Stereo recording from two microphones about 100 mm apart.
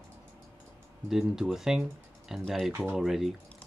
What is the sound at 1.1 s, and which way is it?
Speech, 5° right (ahead or behind).